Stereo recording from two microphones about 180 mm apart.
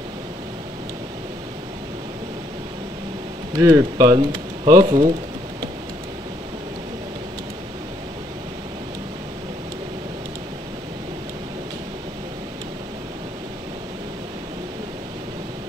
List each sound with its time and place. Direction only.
3.5 s speech: 20° right (ahead or behind)